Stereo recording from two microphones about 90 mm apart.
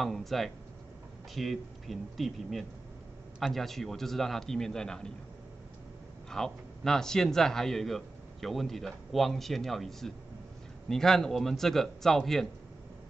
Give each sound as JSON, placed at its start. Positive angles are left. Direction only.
{"t": 0.0, "sound": "a man's voice", "side_deg": 0}
{"t": 6.3, "sound": "a man's voice", "side_deg": 5}